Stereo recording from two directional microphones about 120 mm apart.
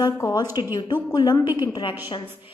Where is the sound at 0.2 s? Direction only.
30° left (ahead or behind).